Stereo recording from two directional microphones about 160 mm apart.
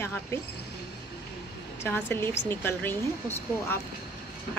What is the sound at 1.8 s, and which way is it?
Speech, 15° left (ahead or behind).